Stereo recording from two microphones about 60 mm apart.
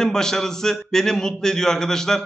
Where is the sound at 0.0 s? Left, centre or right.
Centre.